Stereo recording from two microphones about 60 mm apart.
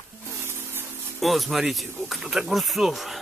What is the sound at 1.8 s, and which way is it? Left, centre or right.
Speech, right.